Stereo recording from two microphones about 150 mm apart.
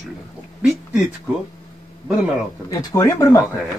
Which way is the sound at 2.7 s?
20° left (ahead or behind).